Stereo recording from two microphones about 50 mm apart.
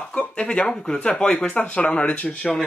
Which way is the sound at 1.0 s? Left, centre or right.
Left.